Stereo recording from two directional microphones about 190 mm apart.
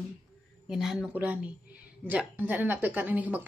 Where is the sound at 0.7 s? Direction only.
Centre (ahead or behind).